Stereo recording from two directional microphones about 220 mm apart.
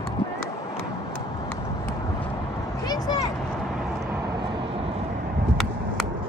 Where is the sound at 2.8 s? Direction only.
15° left (ahead or behind).